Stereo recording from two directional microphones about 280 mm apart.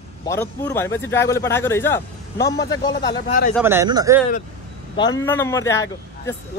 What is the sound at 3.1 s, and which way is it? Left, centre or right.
Speech, left.